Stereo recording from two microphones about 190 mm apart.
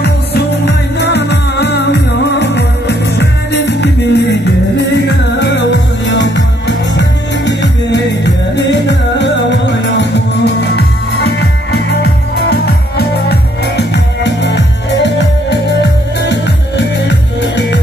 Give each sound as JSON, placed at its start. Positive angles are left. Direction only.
{"t": 0.0, "sound": "music", "side_deg": 60}